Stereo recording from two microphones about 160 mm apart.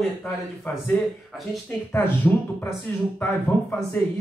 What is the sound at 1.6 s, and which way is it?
A man's voice, 10° left (ahead or behind).